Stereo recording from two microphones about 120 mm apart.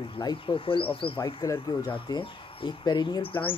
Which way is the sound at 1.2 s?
25° left (ahead or behind).